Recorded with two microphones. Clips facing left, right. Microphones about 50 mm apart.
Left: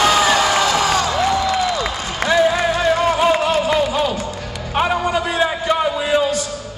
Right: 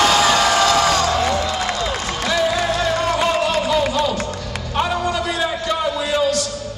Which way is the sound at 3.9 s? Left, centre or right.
Centre.